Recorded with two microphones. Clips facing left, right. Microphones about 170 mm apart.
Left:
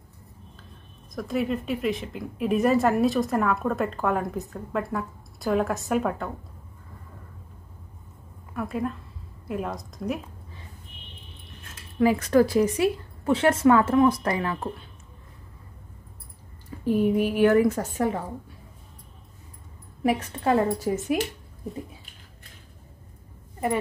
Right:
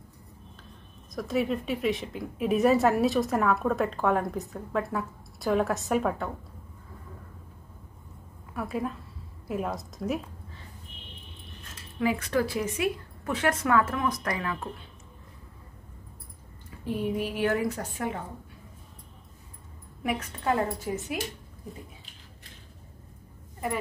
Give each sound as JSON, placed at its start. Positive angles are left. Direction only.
{"t": 1.1, "sound": "speech", "side_deg": 0}
{"t": 8.5, "sound": "speech", "side_deg": 0}
{"t": 12.0, "sound": "a woman's voice", "side_deg": 40}
{"t": 16.8, "sound": "a woman's voice", "side_deg": 50}
{"t": 20.0, "sound": "a woman's voice", "side_deg": 30}